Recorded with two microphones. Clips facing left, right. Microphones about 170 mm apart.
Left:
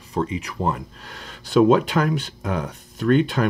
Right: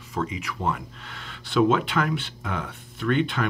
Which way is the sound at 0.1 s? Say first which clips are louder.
Left 4 dB; 30° left (ahead or behind).